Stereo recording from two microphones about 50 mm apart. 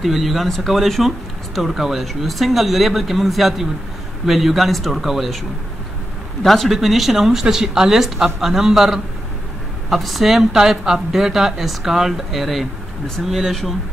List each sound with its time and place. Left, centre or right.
0.0 s speech: centre
6.4 s speech: centre
13.5 s speech: centre